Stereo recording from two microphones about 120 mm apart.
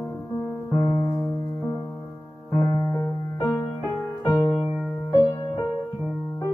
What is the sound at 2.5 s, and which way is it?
Music, 30° left (ahead or behind).